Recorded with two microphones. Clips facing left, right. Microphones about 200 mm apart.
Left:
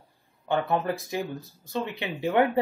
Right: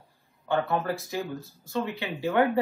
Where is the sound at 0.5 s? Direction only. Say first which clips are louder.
Left 1 dB; 20° left (ahead or behind).